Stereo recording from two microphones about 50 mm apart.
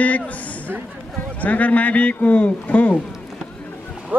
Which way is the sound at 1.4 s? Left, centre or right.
Left.